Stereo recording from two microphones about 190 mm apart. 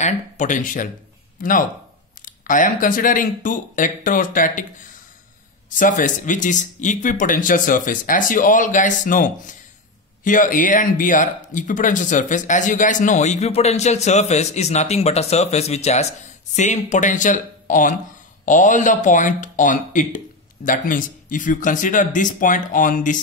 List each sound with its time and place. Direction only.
0.0 s speech: 40° left (ahead or behind)
5.8 s speech: 45° left (ahead or behind)